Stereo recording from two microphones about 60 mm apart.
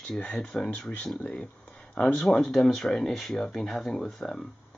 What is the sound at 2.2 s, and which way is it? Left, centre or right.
Speech, centre.